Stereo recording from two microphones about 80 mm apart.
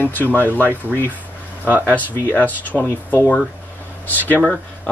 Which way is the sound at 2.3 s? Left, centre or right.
Left.